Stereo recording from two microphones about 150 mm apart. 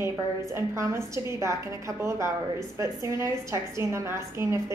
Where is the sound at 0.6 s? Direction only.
20° right (ahead or behind).